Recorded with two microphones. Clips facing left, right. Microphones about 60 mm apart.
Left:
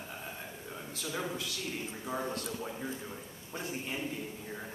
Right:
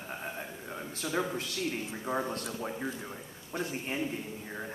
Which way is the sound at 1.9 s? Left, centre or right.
Right.